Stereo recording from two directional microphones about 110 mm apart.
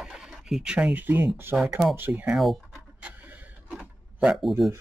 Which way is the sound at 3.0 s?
15° right (ahead or behind).